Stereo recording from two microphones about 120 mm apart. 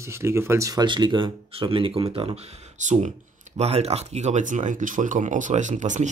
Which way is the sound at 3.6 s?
60° right (ahead or behind).